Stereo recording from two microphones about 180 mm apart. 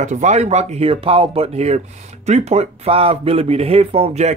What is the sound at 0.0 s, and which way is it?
Speech, 45° right (ahead or behind).